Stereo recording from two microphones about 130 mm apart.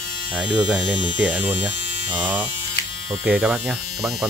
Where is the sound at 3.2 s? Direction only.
10° right (ahead or behind).